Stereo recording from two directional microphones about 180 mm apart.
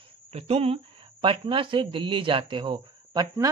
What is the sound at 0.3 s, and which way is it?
A man's voice, 35° right (ahead or behind).